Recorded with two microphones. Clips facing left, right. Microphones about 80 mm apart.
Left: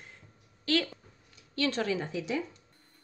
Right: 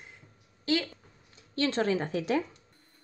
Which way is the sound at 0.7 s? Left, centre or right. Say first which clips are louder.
Even; right.